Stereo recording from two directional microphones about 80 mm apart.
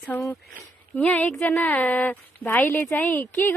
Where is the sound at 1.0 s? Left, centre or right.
Centre.